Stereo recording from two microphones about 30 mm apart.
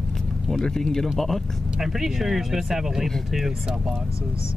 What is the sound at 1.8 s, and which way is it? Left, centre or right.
Speech, centre.